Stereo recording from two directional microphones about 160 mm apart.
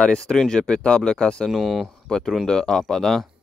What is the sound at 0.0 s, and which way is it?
Speech, 5° left (ahead or behind).